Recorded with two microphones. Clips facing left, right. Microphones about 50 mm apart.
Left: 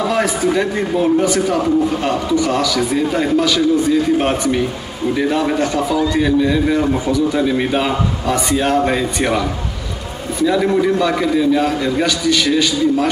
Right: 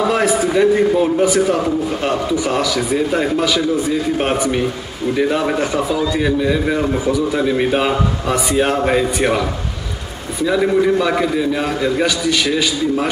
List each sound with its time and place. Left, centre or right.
0.1 s a man's voice: centre